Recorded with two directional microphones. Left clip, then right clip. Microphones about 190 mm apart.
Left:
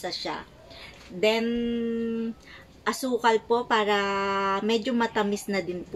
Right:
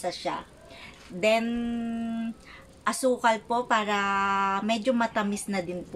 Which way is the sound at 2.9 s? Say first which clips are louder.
Even; 20° right (ahead or behind).